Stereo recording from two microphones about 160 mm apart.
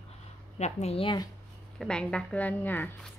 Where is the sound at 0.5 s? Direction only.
45° left (ahead or behind).